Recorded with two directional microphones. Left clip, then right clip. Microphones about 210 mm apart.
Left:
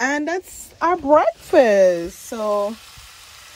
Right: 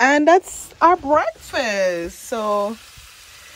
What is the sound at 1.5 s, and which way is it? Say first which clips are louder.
Speech: left 8 dB; 30° left (ahead or behind).